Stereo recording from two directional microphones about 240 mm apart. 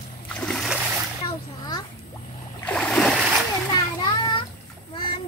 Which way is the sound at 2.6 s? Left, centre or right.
Centre.